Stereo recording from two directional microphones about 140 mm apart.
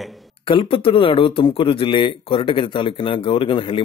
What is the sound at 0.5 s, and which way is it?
Speech, 40° left (ahead or behind).